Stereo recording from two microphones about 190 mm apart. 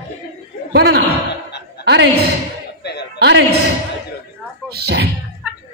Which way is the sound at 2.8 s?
60° left (ahead or behind).